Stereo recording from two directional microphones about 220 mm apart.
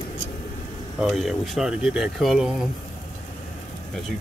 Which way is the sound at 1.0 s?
Centre (ahead or behind).